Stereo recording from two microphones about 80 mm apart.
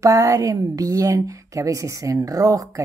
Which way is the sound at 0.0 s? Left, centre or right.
Right.